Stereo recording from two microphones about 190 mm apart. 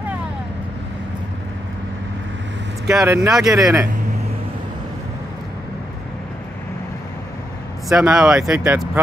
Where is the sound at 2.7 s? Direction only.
Centre (ahead or behind).